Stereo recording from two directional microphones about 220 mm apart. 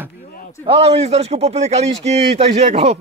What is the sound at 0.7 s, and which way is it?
A man's voice, 25° right (ahead or behind).